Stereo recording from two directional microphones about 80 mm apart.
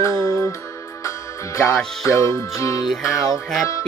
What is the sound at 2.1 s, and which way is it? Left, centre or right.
Music, left.